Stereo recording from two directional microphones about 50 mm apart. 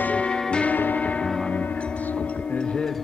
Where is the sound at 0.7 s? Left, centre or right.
Left.